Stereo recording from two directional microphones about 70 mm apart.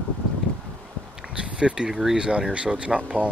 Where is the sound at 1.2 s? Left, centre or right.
Centre.